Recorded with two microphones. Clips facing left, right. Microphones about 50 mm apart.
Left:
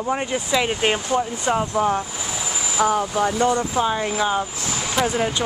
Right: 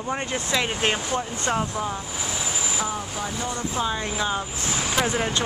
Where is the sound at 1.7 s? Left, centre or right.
Left.